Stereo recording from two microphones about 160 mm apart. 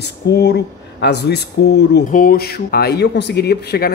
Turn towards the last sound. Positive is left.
turn(degrees=85)